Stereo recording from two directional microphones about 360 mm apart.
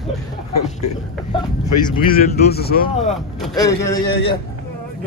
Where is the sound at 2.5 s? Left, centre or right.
Left.